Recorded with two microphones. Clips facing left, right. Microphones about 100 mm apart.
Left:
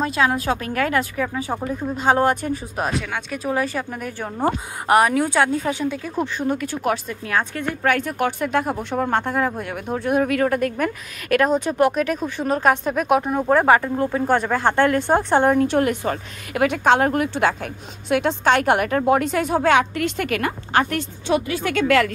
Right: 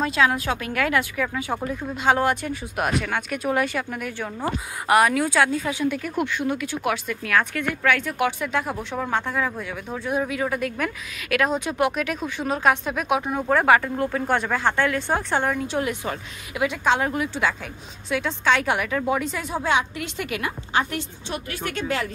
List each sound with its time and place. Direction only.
0.0 s a woman's voice: 30° left (ahead or behind)
9.9 s a woman's voice: 60° left (ahead or behind); by 13.2 s 40° left (ahead or behind)
13.2 s speech: centre (ahead or behind)
13.9 s speech: 20° left (ahead or behind)
14.3 s a woman's voice: 40° left (ahead or behind)
15.6 s a woman's voice: 55° left (ahead or behind)
21.3 s speech: 85° left